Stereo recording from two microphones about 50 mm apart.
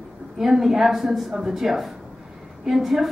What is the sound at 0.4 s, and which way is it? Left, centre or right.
A woman's voice, centre.